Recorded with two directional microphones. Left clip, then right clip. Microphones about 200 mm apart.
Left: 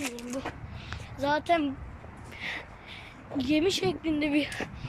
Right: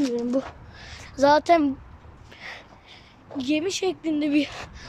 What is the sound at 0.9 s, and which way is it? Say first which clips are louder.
Speech: right 10 dB; 25° right (ahead or behind).